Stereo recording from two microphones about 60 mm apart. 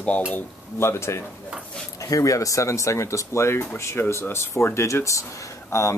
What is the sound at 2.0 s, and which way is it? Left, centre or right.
Speech, left.